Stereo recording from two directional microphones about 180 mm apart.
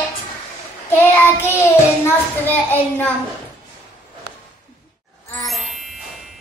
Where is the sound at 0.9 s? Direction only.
10° left (ahead or behind).